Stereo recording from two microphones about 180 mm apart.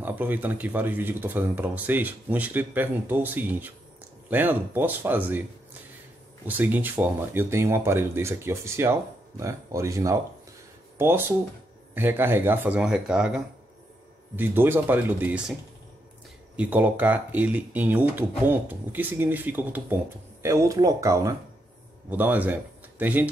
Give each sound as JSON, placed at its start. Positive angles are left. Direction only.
{"t": 0.0, "sound": "speech", "side_deg": -10}
{"t": 6.4, "sound": "speech", "side_deg": -10}
{"t": 16.5, "sound": "speech", "side_deg": -10}